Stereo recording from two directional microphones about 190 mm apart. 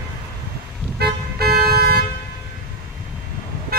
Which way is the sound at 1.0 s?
55° right (ahead or behind).